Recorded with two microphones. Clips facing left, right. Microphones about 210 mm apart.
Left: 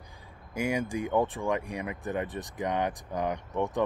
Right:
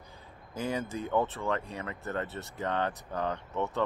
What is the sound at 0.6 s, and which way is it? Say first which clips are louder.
Speech: left 4 dB; 15° left (ahead or behind).